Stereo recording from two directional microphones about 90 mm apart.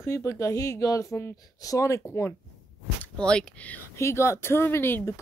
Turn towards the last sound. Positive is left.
turn(degrees=30)  # may be behind; listen again after turning